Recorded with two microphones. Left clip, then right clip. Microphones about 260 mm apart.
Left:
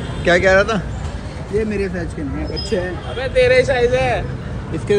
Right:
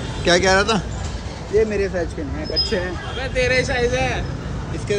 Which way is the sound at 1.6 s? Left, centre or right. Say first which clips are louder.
Right 2 dB; left.